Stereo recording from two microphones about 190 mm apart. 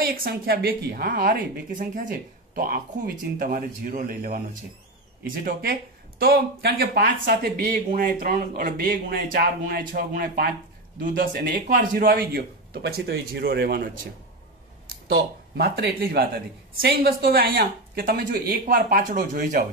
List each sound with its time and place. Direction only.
0.0 s speech: 50° right (ahead or behind)
15.0 s speech: 60° right (ahead or behind)